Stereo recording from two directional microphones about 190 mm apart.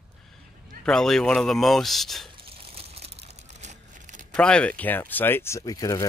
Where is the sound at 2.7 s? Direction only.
30° right (ahead or behind).